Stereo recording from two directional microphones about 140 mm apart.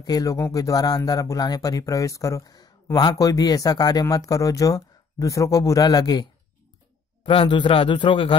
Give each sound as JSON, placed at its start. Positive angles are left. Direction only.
{"t": 0.0, "sound": "speech", "side_deg": 25}
{"t": 7.2, "sound": "a man's voice", "side_deg": 35}